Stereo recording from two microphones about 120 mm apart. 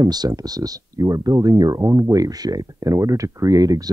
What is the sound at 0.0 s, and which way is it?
Speech, 35° right (ahead or behind).